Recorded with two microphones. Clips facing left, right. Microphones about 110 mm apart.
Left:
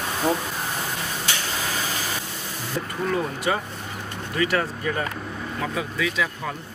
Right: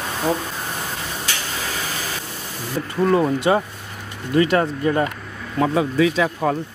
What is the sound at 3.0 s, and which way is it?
Speech, 35° right (ahead or behind).